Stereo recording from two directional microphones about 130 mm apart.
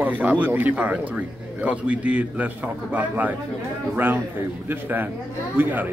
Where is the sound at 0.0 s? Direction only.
15° right (ahead or behind).